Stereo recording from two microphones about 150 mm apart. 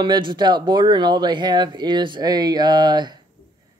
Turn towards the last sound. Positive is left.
turn(degrees=-30)  # may be behind; listen again after turning